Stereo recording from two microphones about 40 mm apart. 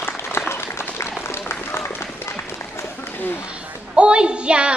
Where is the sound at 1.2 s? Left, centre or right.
Left.